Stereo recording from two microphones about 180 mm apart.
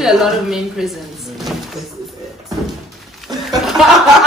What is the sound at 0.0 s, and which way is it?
Speech, centre (ahead or behind).